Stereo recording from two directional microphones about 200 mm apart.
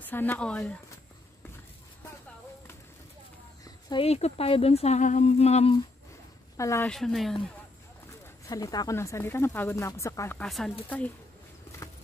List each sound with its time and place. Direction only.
0.0 s speech: 10° left (ahead or behind)
3.6 s speech: 25° left (ahead or behind)
6.5 s speech: 15° left (ahead or behind)
6.9 s speech: centre (ahead or behind)
8.5 s speech: 20° left (ahead or behind); by 10.7 s centre (ahead or behind)